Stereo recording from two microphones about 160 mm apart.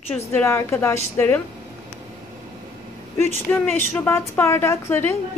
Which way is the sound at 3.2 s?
15° left (ahead or behind).